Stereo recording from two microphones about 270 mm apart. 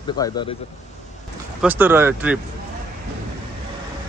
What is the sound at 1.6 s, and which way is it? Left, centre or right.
Speech, centre.